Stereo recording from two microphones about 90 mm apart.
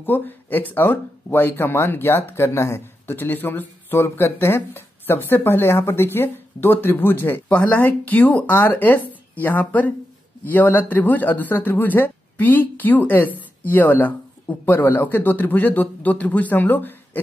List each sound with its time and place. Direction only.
0.0 s speech: 20° left (ahead or behind)